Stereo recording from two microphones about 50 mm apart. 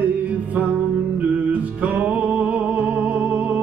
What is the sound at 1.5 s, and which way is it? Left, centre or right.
Music, right.